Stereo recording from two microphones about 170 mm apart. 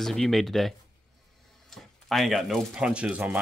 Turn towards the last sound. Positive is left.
turn(degrees=-5)  # may be behind; listen again after turning